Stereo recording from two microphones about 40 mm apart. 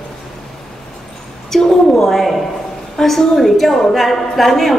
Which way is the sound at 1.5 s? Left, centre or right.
Centre.